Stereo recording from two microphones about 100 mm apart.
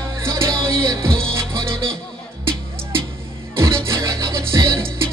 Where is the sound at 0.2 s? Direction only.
25° right (ahead or behind).